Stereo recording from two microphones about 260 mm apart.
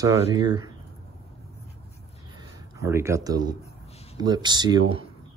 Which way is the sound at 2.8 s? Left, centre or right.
Centre.